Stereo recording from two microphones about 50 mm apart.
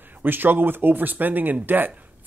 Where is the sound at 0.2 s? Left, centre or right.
Right.